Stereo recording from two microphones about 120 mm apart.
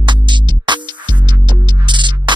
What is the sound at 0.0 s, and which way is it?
Music, 40° right (ahead or behind).